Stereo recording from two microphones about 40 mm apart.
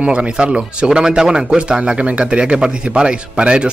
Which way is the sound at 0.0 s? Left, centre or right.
Right.